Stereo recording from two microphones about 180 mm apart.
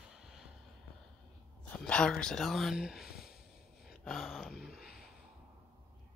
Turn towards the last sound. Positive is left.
turn(degrees=-5)  # may be behind; listen again after turning